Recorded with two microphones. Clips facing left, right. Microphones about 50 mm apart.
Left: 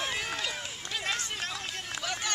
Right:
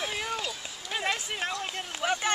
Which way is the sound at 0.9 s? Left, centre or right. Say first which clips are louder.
Right 4 dB; centre.